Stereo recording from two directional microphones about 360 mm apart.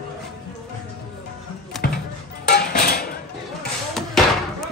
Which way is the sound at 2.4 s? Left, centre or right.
Left.